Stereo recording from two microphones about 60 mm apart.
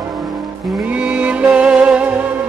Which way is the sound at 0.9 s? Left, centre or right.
Right.